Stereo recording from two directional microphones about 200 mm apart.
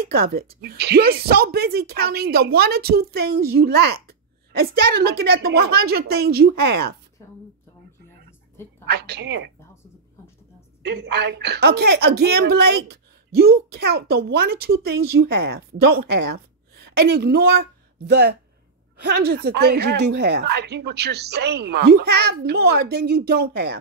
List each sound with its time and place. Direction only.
0.1 s speech: 50° right (ahead or behind)
8.8 s a woman's voice: 55° right (ahead or behind)
10.8 s a woman's voice: 55° right (ahead or behind)